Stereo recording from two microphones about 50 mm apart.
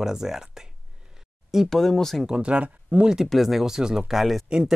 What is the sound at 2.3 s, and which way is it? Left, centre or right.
Speech, right.